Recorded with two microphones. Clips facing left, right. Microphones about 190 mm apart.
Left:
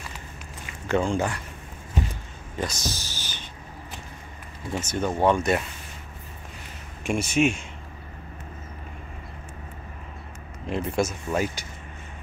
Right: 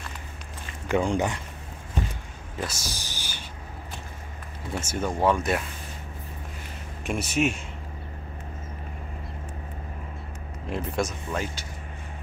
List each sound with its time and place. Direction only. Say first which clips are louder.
0.8 s speech: even; 15° right (ahead or behind)
2.5 s a sound: left 3 dB; 5° right (ahead or behind)
4.7 s speech: left 2 dB; 5° right (ahead or behind)
7.1 s speech: left 3 dB; centre (ahead or behind)
10.7 s speech: left 3 dB; centre (ahead or behind)